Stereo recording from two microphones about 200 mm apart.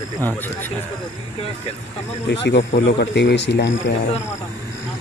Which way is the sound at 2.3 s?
60° left (ahead or behind).